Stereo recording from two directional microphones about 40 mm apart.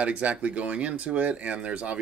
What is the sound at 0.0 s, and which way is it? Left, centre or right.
Speech, right.